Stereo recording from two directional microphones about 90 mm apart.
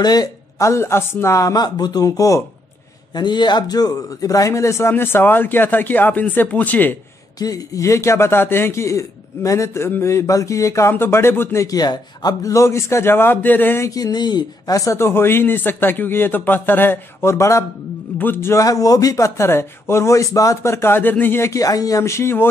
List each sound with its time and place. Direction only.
0.0 s a man's voice: 50° left (ahead or behind)
0.6 s a man's voice: 30° left (ahead or behind)
3.2 s a man's voice: 55° left (ahead or behind); by 7.0 s 20° left (ahead or behind)
7.3 s a man's voice: 45° left (ahead or behind); by 11.6 s 25° left (ahead or behind)
11.6 s a man's voice: 45° left (ahead or behind)
12.5 s a man's voice: 30° left (ahead or behind)
13.8 s a man's voice: 45° left (ahead or behind)
14.9 s a man's voice: 30° left (ahead or behind)
18.1 s a man's voice: 25° left (ahead or behind)
18.6 s a man's voice: 40° left (ahead or behind)